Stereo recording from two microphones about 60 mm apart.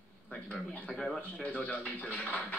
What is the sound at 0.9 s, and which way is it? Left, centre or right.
Speech, centre.